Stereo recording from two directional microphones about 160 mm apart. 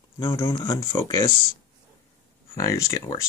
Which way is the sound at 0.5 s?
25° left (ahead or behind).